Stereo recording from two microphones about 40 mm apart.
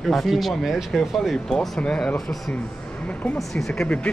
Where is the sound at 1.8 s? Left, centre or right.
Left.